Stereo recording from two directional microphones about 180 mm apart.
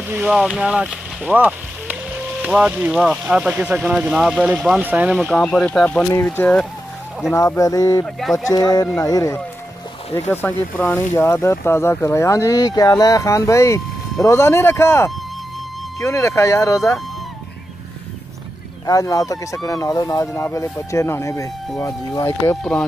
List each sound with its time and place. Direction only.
0.1 s speech: 5° right (ahead or behind)
7.3 s speech: 20° left (ahead or behind)
8.2 s speech: centre (ahead or behind)
8.5 s speech: 20° left (ahead or behind)
18.9 s speech: 20° left (ahead or behind)